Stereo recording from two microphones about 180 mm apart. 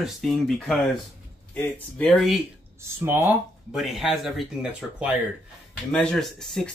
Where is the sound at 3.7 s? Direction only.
Centre (ahead or behind).